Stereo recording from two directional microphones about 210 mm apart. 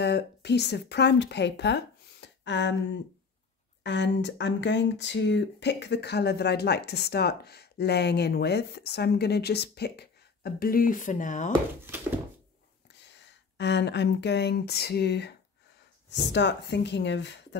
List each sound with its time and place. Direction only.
0.0 s speech: 50° left (ahead or behind); by 11.5 s 35° left (ahead or behind)
13.0 s speech: 55° left (ahead or behind)